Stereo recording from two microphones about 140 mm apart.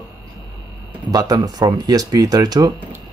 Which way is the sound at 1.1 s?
25° right (ahead or behind).